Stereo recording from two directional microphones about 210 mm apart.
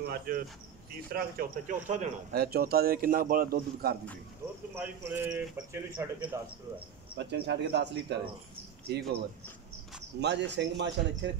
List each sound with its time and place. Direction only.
0.3 s a man's voice: 40° right (ahead or behind)
4.7 s a man's voice: 10° right (ahead or behind)
7.2 s a man's voice: 55° right (ahead or behind)
10.2 s speech: 55° right (ahead or behind)